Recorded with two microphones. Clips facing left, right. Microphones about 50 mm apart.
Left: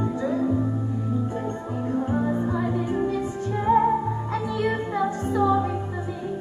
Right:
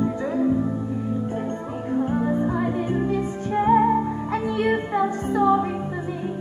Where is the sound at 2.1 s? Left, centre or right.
Right.